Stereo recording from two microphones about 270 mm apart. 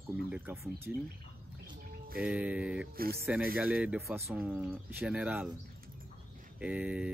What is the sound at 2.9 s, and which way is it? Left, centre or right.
Speech, right.